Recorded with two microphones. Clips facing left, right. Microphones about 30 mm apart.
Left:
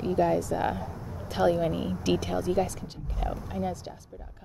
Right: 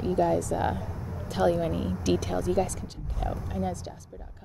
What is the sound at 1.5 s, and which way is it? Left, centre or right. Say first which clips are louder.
Speech: left 1 dB; centre.